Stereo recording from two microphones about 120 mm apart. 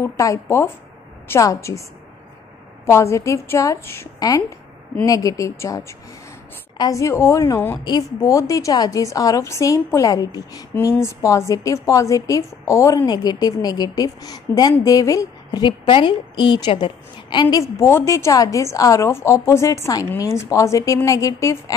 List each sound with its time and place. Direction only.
0.0 s a woman's voice: 25° left (ahead or behind)
2.9 s a woman's voice: 25° left (ahead or behind)
7.8 s a woman's voice: 30° left (ahead or behind)